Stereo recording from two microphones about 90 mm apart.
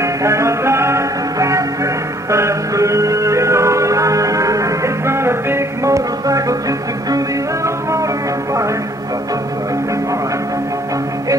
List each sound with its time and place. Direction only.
0.0 s music: 35° right (ahead or behind)